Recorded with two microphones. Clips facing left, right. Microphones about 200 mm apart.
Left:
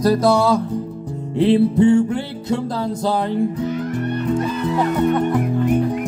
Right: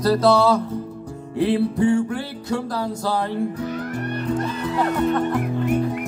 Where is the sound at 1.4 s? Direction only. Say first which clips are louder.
Left 5 dB; 25° left (ahead or behind).